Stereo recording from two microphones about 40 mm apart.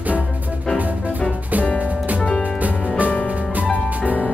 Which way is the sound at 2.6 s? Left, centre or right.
Right.